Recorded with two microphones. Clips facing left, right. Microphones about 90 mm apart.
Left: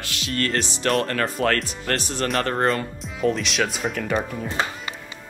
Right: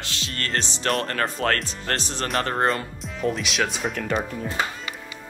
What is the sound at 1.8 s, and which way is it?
Speech, 25° right (ahead or behind).